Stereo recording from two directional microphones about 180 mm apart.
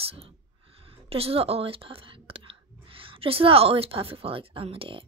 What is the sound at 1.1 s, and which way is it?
Speech, 35° right (ahead or behind).